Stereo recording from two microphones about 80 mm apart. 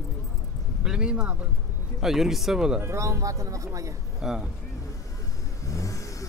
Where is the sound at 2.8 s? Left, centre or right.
Right.